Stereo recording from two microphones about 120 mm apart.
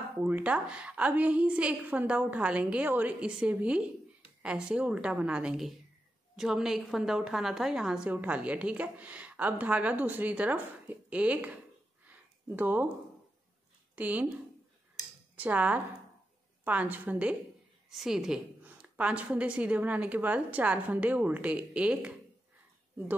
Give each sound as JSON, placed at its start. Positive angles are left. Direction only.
{"t": 0.2, "sound": "a woman's voice", "side_deg": -15}
{"t": 12.1, "sound": "a sound", "side_deg": -15}
{"t": 13.9, "sound": "speech", "side_deg": -15}
{"t": 15.3, "sound": "a woman's voice", "side_deg": -15}